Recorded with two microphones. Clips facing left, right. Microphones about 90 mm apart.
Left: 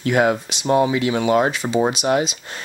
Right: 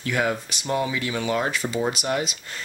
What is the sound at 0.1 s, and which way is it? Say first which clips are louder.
Speech: left 7 dB; 20° left (ahead or behind).